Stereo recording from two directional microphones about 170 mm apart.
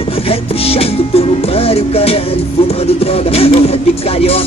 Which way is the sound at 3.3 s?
35° left (ahead or behind).